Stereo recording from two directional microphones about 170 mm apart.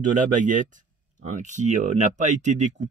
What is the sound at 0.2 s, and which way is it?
Speech, 50° right (ahead or behind).